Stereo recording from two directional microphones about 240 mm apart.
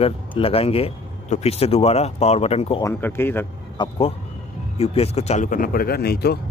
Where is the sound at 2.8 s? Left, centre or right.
Centre.